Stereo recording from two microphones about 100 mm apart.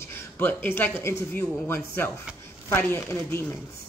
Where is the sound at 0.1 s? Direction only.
20° left (ahead or behind).